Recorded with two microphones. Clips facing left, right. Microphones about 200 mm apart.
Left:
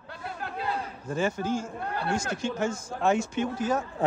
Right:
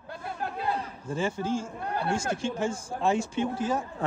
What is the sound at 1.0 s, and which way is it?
A man's voice, 30° right (ahead or behind).